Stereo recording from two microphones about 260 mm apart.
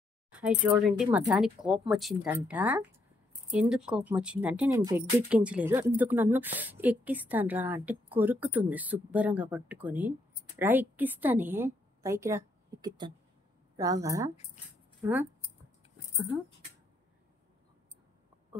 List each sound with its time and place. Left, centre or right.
0.3 s a woman's voice: centre